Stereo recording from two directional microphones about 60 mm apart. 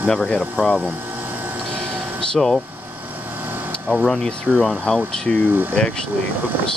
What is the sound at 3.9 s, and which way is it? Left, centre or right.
Speech, centre.